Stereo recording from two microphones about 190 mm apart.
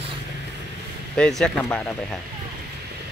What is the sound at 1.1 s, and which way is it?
Speech, 5° left (ahead or behind).